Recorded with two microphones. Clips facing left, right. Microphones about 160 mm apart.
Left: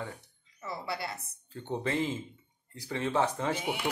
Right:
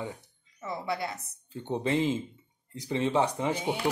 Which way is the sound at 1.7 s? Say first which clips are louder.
Right 4 dB; 20° right (ahead or behind).